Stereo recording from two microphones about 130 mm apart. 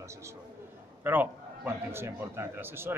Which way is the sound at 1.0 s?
15° right (ahead or behind).